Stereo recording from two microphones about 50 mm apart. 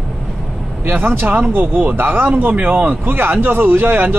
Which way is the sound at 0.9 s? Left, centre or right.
Right.